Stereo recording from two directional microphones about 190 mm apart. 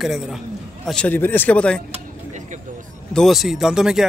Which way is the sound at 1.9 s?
40° right (ahead or behind).